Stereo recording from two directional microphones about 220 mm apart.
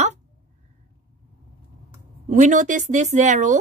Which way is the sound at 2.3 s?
35° right (ahead or behind).